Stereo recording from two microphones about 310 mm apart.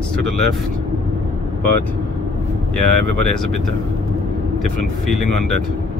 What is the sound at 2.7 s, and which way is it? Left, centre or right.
Speech, left.